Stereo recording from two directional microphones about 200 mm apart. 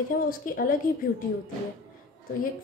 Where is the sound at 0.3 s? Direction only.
45° left (ahead or behind).